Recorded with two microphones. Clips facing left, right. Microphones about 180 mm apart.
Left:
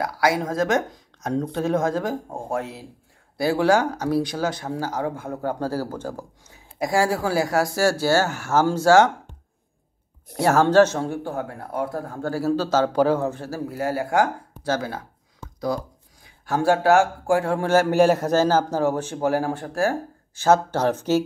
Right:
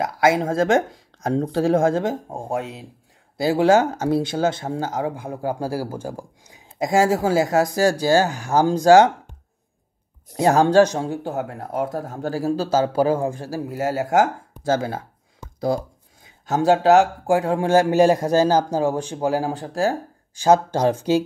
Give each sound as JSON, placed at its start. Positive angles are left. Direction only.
{"t": 0.0, "sound": "speech", "side_deg": -25}
{"t": 10.3, "sound": "speech", "side_deg": -15}
{"t": 16.3, "sound": "speech", "side_deg": -20}